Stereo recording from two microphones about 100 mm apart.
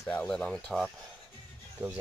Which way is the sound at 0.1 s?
10° left (ahead or behind).